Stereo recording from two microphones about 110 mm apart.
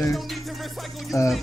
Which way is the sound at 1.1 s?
30° left (ahead or behind).